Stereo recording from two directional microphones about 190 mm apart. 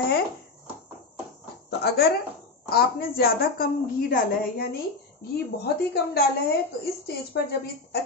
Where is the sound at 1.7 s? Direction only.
55° left (ahead or behind).